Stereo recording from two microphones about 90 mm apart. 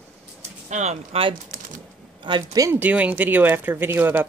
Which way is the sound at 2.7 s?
20° right (ahead or behind).